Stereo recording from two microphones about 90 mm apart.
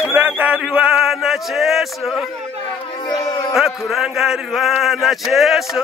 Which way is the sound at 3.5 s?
5° right (ahead or behind).